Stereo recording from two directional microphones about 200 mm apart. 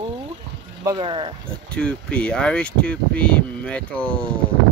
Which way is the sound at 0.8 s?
25° right (ahead or behind).